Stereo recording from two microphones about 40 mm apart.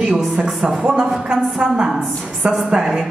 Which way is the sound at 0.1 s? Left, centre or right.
Centre.